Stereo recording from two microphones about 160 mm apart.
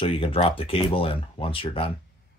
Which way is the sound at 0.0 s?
35° left (ahead or behind).